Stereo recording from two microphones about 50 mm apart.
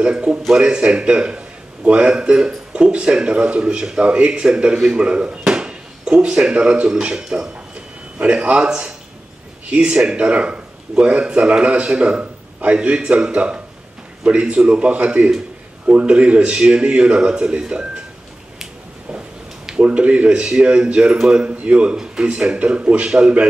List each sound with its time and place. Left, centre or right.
0.0 s speech: right
19.8 s speech: right